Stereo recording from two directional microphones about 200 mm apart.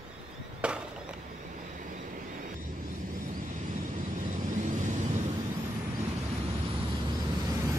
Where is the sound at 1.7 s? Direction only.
40° right (ahead or behind).